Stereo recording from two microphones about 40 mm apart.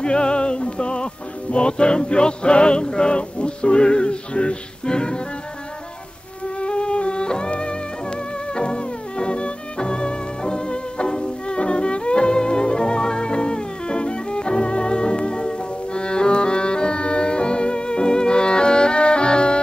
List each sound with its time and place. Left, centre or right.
0.0 s music: left
6.4 s music: left